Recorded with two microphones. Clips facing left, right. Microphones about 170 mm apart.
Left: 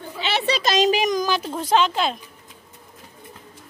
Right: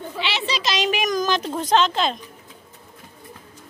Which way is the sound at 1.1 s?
10° left (ahead or behind).